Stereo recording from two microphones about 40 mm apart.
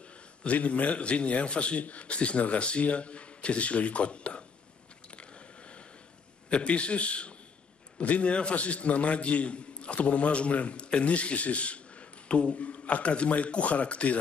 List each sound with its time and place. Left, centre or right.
0.0 s a man's voice: left
5.1 s biting: left
6.5 s a man's voice: left